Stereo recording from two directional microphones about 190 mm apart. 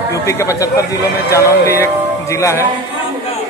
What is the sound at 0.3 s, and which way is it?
Speech, 15° left (ahead or behind).